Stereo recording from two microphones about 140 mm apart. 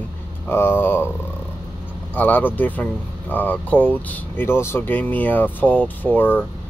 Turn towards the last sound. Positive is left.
turn(degrees=15)  # may be behind; listen again after turning